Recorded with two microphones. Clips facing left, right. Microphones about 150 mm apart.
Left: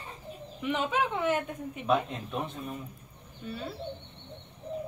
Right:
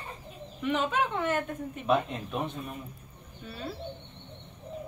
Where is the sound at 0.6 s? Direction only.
10° left (ahead or behind).